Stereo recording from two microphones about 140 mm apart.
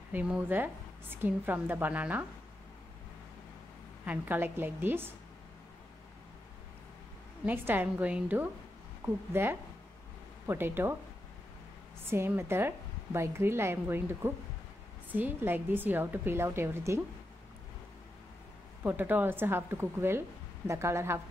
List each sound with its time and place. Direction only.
0.1 s a woman's voice: 10° right (ahead or behind)
4.0 s a woman's voice: 10° right (ahead or behind)
7.4 s a woman's voice: 15° right (ahead or behind)
12.1 s a woman's voice: 15° right (ahead or behind)
18.9 s a woman's voice: 15° right (ahead or behind)